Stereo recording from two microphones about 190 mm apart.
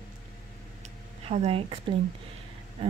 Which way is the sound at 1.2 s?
30° right (ahead or behind).